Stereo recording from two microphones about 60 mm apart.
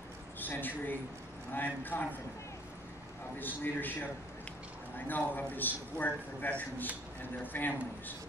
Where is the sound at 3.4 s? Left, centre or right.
Left.